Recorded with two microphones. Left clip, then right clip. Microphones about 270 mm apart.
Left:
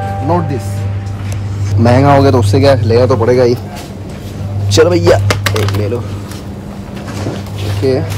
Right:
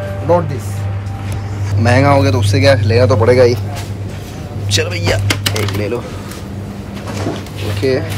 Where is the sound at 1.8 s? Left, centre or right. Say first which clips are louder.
Left 3 dB; centre.